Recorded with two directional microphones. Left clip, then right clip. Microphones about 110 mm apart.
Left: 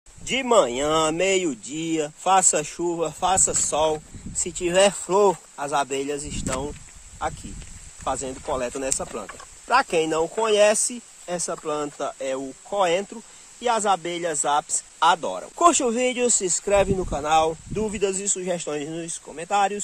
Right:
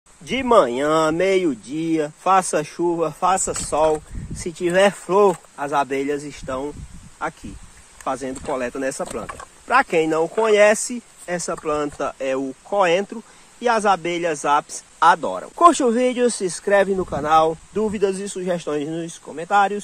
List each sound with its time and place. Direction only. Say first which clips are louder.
0.2 s speech: right 3 dB; 5° left (ahead or behind)
8.0 s speech: right 2 dB; centre (ahead or behind)
11.2 s speech: right 4 dB; 15° right (ahead or behind)